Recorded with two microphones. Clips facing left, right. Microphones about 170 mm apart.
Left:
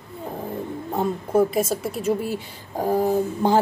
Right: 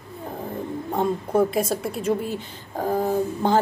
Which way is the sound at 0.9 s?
5° left (ahead or behind).